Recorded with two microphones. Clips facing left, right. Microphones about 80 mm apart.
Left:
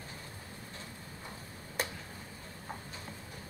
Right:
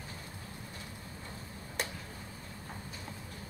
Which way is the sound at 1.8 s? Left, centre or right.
Centre.